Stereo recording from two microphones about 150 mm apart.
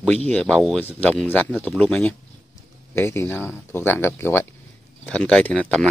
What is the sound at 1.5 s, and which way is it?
Speech, 5° right (ahead or behind).